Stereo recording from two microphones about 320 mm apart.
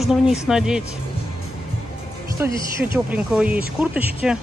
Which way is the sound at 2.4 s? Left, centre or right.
Centre.